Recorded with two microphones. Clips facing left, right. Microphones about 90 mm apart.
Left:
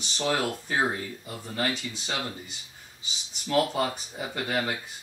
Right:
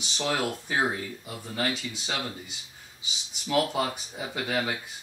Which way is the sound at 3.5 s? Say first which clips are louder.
Left 1 dB; 5° right (ahead or behind).